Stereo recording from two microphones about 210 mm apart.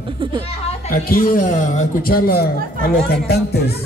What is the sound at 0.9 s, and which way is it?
Speech, 45° left (ahead or behind).